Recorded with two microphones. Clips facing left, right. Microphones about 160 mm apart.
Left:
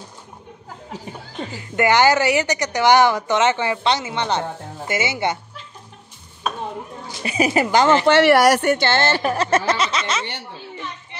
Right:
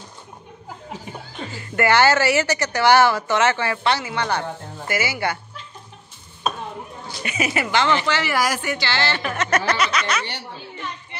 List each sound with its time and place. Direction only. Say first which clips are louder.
1.5 s speech: left 1 dB; 15° left (ahead or behind)
7.2 s speech: left 6 dB; 35° left (ahead or behind)
8.2 s speech: left 9 dB; 65° left (ahead or behind); by 10.4 s 25° left (ahead or behind)